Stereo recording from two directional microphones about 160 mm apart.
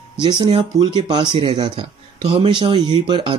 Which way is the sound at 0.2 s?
30° right (ahead or behind).